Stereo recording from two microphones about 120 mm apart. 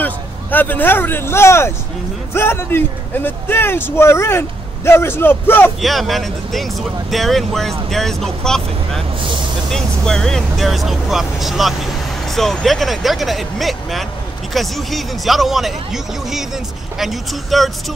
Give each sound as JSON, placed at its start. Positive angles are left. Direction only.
{"t": 0.0, "sound": "speech", "side_deg": 15}
{"t": 5.8, "sound": "speech", "side_deg": 0}